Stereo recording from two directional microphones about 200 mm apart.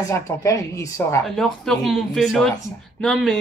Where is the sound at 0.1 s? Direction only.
15° left (ahead or behind).